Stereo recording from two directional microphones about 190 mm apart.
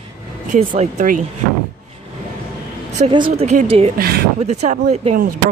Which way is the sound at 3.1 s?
25° right (ahead or behind).